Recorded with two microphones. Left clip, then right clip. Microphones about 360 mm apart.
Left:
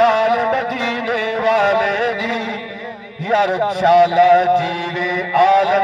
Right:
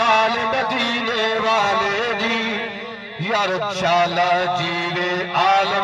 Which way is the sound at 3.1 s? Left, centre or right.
Left.